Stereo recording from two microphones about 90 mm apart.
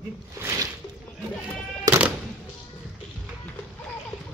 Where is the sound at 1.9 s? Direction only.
45° right (ahead or behind).